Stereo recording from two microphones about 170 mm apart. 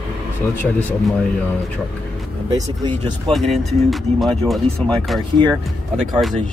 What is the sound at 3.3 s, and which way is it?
Speech, centre (ahead or behind).